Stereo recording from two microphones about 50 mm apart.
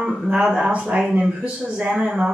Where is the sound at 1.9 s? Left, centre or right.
Centre.